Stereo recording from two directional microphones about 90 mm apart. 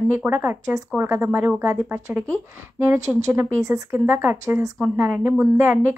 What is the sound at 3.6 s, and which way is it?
Speech, 40° right (ahead or behind).